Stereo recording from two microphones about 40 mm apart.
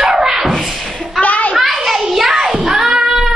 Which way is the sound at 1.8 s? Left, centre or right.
Centre.